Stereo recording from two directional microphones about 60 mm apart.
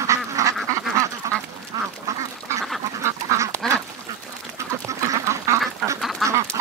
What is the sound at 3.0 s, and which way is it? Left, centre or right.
Duck, right.